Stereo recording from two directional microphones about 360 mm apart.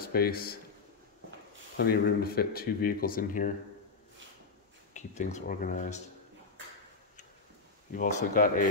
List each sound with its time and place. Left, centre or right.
0.0 s a man's voice: left
1.8 s speech: left
4.9 s speech: centre
7.9 s speech: left